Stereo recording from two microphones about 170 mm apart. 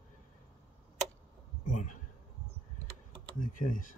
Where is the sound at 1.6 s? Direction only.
50° left (ahead or behind).